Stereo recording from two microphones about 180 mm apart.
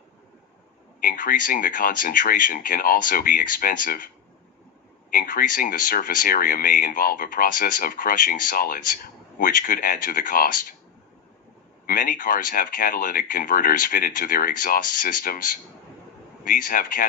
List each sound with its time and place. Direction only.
1.0 s speech: 50° left (ahead or behind)
5.1 s speech: 50° left (ahead or behind)
11.8 s speech: 50° left (ahead or behind)